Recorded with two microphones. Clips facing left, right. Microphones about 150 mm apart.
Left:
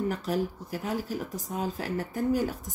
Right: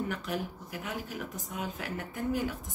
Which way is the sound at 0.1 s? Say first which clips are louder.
Left 6 dB; 35° left (ahead or behind).